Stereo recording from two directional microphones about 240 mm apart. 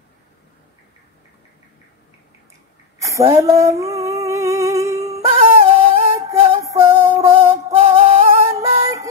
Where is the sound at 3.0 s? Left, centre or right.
Centre.